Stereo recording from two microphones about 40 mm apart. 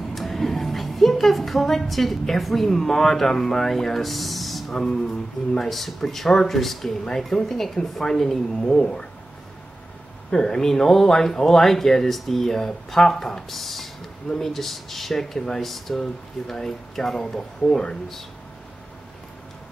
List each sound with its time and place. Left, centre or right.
0.1 s speech: centre
10.3 s speech: centre